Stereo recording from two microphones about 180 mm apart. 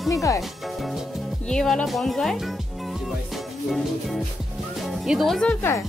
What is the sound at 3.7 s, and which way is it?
Speech, centre (ahead or behind).